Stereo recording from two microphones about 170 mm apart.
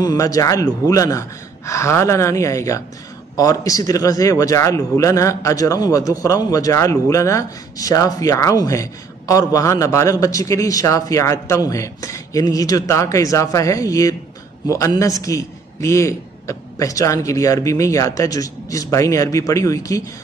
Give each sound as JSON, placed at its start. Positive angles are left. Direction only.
{"t": 0.0, "sound": "a man's voice", "side_deg": 20}